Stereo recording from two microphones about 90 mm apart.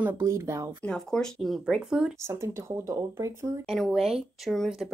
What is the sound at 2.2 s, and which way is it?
Speech, 30° right (ahead or behind).